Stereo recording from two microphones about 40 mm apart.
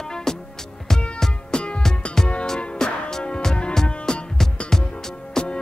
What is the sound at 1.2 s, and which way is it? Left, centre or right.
Music, left.